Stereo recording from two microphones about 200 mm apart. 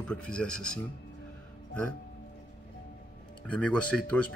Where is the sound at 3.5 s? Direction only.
5° left (ahead or behind).